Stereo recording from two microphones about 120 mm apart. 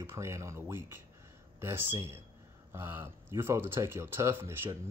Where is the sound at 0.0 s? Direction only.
25° right (ahead or behind).